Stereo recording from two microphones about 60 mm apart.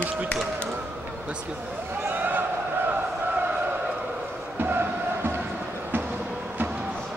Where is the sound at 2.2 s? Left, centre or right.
Right.